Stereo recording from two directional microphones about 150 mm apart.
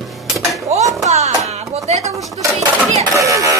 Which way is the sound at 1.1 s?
45° right (ahead or behind).